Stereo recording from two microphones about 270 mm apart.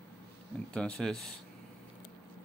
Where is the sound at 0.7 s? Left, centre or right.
Centre.